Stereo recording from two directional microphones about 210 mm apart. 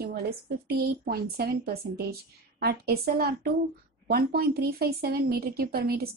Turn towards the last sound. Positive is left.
turn(degrees=-45)  # may be behind; listen again after turning